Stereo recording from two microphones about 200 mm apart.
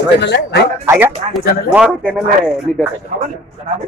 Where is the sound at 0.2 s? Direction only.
60° left (ahead or behind).